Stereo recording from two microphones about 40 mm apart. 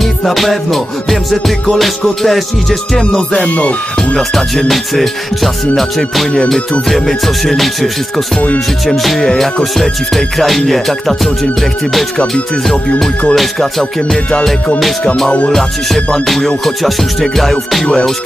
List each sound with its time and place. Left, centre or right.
0.0 s music: centre
2.2 s music: centre
3.0 s music: left
3.4 s music: left
4.6 s music: centre
13.3 s music: centre
15.2 s music: left
17.4 s music: centre